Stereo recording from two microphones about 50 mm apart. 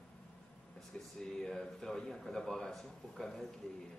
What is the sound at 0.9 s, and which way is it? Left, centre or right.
Speech, centre.